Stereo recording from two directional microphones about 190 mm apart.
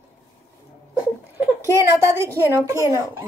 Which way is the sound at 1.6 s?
15° right (ahead or behind).